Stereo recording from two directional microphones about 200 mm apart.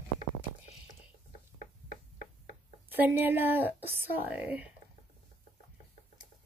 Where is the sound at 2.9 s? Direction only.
10° right (ahead or behind).